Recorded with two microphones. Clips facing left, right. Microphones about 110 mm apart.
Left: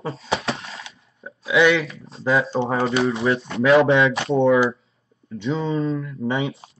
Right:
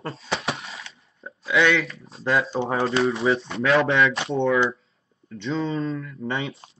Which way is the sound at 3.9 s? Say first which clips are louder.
Left 4 dB; 30° left (ahead or behind).